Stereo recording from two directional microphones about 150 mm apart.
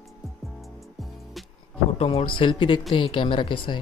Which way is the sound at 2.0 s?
40° left (ahead or behind).